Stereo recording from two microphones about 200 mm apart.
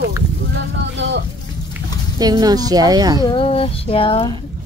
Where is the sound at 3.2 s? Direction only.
25° left (ahead or behind).